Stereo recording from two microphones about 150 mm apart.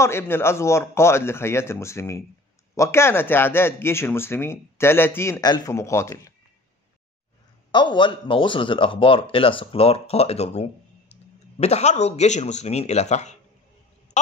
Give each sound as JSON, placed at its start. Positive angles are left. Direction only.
{"t": 0.0, "sound": "speech", "side_deg": 15}
{"t": 5.4, "sound": "speech", "side_deg": 25}
{"t": 7.7, "sound": "speech", "side_deg": 30}
{"t": 14.1, "sound": "a sound", "side_deg": 50}